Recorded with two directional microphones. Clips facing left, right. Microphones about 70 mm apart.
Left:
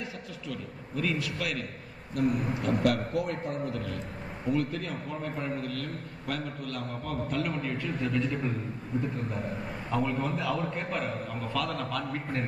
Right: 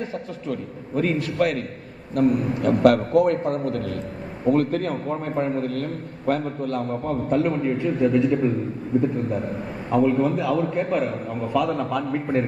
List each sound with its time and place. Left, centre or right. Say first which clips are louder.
0.0 s a man's voice: right 9 dB; right; by 8.3 s centre
9.8 s a man's voice: right 11 dB; centre